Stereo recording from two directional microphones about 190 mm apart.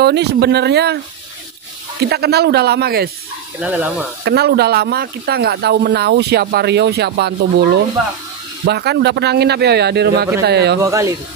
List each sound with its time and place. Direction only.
0.0 s speech: 60° right (ahead or behind)
2.0 s speech: 60° right (ahead or behind)
3.5 s speech: 5° right (ahead or behind)
4.2 s speech: 60° right (ahead or behind)
10.8 s speech: 15° right (ahead or behind)